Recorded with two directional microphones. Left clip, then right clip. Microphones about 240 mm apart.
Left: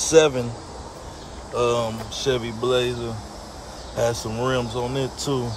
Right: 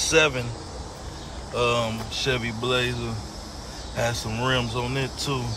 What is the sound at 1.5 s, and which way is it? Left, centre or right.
Speech, centre.